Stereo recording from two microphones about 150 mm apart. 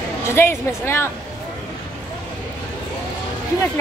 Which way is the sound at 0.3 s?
15° left (ahead or behind).